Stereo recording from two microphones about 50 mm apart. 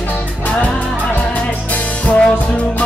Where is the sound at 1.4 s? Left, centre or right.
Left.